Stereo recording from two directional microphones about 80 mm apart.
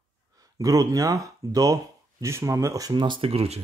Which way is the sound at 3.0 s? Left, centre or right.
Right.